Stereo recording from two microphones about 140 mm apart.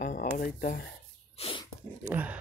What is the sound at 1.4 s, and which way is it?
Dog, 40° left (ahead or behind).